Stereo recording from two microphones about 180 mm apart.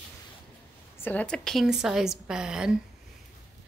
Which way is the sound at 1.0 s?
10° left (ahead or behind).